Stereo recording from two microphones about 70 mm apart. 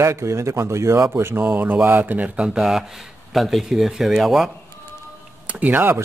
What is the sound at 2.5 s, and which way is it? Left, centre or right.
Speech, centre.